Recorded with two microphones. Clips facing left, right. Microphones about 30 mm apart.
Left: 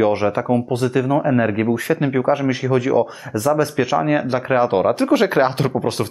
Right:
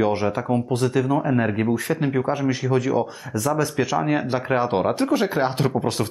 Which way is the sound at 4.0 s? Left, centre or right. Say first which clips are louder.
Left 4 dB; centre.